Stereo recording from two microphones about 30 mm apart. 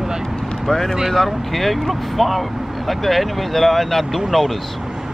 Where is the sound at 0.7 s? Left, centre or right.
Centre.